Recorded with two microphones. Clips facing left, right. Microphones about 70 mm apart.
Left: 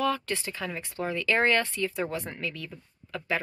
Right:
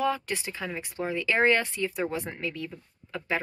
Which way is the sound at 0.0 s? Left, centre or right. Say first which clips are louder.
Even; centre.